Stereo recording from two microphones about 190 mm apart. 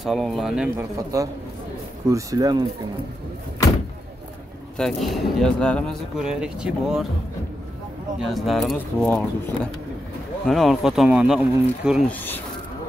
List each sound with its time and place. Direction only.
0.0 s speech: centre (ahead or behind)
0.7 s speech: 15° right (ahead or behind)
4.7 s speech: centre (ahead or behind)
8.2 s speech: centre (ahead or behind)
10.4 s speech: centre (ahead or behind)
12.1 s speech: 10° left (ahead or behind)